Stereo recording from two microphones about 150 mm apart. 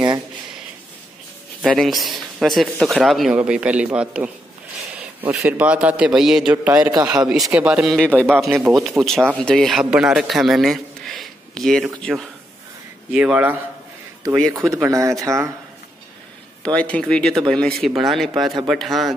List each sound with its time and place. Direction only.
1.6 s a man's voice: centre (ahead or behind)
5.3 s a man's voice: 5° right (ahead or behind)
13.1 s a man's voice: 10° right (ahead or behind)
16.6 s a man's voice: 10° left (ahead or behind)